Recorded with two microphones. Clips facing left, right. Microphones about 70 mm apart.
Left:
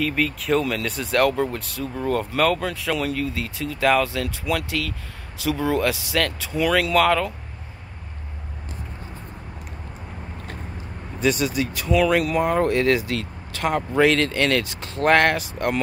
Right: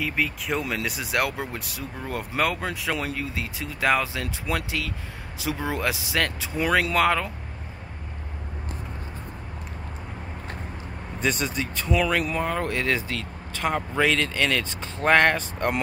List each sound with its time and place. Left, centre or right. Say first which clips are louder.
0.0 s speech: left 4 dB; centre
0.6 s speech: left 4 dB; centre
11.1 s speech: left 5 dB; centre
14.1 s speech: left 4 dB; centre